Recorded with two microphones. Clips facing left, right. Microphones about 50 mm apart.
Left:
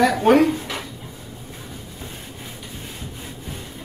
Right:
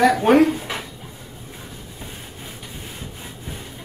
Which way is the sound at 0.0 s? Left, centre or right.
Centre.